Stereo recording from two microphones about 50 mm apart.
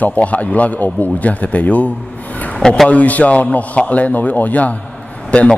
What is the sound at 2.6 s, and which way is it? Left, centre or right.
Speech, centre.